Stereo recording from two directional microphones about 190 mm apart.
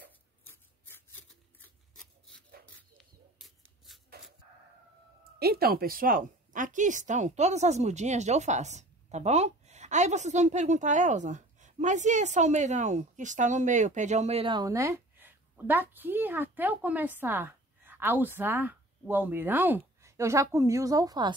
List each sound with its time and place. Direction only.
0.5 s scissors: 10° left (ahead or behind)
1.6 s rub: 5° left (ahead or behind)
2.6 s a sound: 5° left (ahead or behind)
5.4 s speech: 55° right (ahead or behind); by 21.4 s 20° right (ahead or behind)